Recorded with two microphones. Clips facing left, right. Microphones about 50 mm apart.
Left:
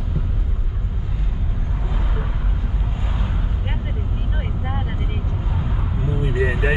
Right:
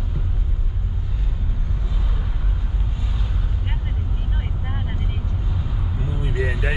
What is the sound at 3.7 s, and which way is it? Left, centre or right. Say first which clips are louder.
Vehicle: left 3 dB; centre.